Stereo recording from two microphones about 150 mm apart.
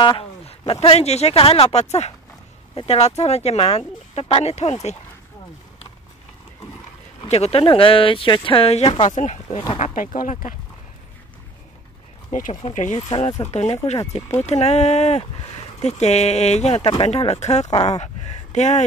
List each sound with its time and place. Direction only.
0.0 s speech: 35° left (ahead or behind)
7.2 s speech: 45° left (ahead or behind)
12.3 s speech: 60° left (ahead or behind); by 16.8 s 45° left (ahead or behind)
16.8 s speech: 35° left (ahead or behind)
17.1 s speech: 45° left (ahead or behind)